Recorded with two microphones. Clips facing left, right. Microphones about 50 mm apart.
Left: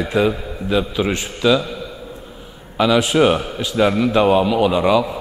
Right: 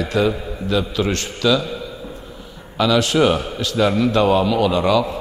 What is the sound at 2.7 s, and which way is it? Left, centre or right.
A man's voice, centre.